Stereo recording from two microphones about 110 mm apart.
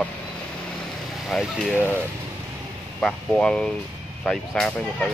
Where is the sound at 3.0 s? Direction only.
10° left (ahead or behind).